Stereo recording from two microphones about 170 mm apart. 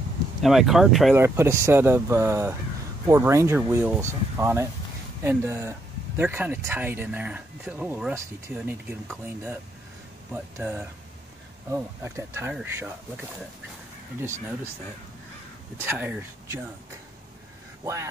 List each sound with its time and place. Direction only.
0.4 s speech: centre (ahead or behind)
1.1 s speech: 15° right (ahead or behind)
15.8 s speech: 10° right (ahead or behind)
17.8 s speech: 15° right (ahead or behind)